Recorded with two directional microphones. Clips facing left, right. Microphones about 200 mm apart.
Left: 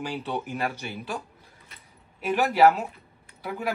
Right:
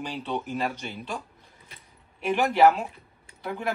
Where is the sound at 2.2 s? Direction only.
5° left (ahead or behind).